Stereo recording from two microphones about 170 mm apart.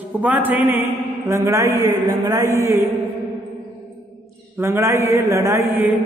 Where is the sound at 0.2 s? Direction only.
10° right (ahead or behind).